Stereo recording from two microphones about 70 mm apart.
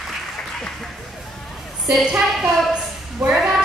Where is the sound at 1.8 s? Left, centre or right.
Centre.